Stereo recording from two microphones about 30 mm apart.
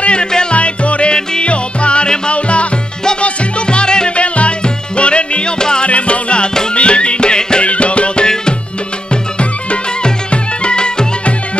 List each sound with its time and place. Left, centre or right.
0.0 s music: left
4.1 s music: left
5.6 s music: left
5.9 s music: left
7.6 s music: left